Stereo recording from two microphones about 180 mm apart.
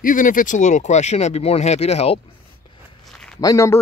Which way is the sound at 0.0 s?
45° left (ahead or behind).